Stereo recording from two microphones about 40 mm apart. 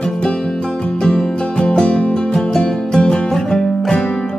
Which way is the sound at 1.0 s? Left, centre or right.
Centre.